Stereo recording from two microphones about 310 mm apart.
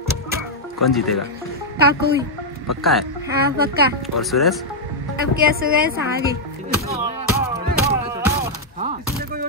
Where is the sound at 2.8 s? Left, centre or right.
Centre.